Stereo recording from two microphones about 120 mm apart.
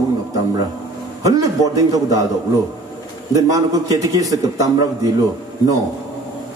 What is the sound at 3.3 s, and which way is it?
A man's voice, 30° right (ahead or behind).